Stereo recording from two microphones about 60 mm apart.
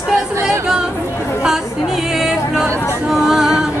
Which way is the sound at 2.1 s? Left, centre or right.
Centre.